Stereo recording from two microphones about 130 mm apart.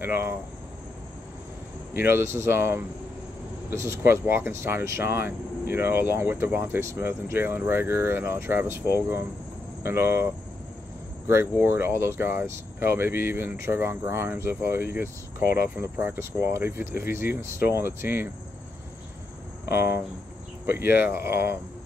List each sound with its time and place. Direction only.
0.0 s speech: 15° right (ahead or behind)
2.0 s speech: 20° right (ahead or behind)
20.6 s speech: 15° right (ahead or behind)